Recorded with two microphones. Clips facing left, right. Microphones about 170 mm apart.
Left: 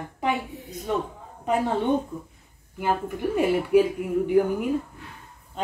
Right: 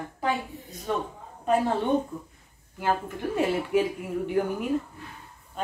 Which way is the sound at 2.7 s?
10° left (ahead or behind).